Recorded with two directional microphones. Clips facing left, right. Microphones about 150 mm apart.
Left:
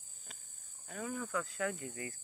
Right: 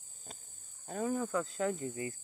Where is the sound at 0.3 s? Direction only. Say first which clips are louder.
Right 6 dB; 30° right (ahead or behind).